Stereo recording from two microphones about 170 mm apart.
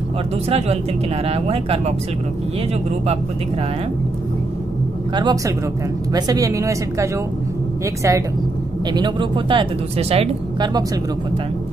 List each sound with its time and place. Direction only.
0.5 s speech: 40° right (ahead or behind)
5.1 s speech: 25° right (ahead or behind)